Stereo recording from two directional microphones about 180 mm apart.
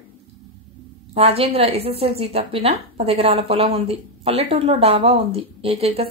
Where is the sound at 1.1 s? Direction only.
35° right (ahead or behind).